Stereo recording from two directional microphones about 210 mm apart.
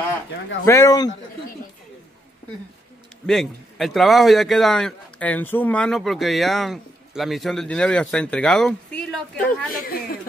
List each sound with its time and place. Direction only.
0.7 s speech: 15° left (ahead or behind)
3.3 s a man's voice: centre (ahead or behind)
9.7 s speech: 45° left (ahead or behind)